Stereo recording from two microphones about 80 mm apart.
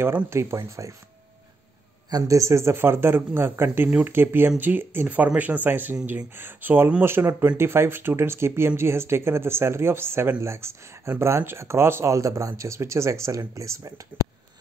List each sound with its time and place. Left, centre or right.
0.0 s speech: right
2.0 s speech: right